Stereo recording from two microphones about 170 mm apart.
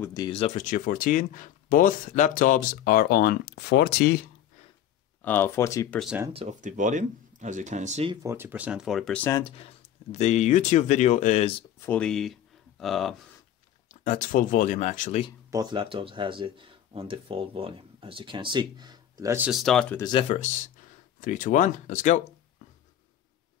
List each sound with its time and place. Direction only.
0.0 s speech: 20° left (ahead or behind)
0.3 s speech: 35° left (ahead or behind)
0.7 s speech: 50° left (ahead or behind); by 4.3 s 70° left (ahead or behind)
5.2 s speech: 10° left (ahead or behind)
6.3 s speech: 40° right (ahead or behind)
8.1 s speech: 20° right (ahead or behind); by 9.3 s 5° left (ahead or behind)
9.4 s speech: 35° left (ahead or behind)
11.8 s speech: 5° left (ahead or behind)
13.8 s speech: 45° left (ahead or behind)
15.5 s speech: 25° right (ahead or behind)
19.5 s speech: centre (ahead or behind)
20.0 s speech: 25° left (ahead or behind)
20.2 s speech: 45° left (ahead or behind)